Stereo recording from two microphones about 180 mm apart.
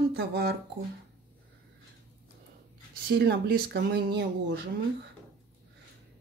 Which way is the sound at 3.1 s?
65° right (ahead or behind).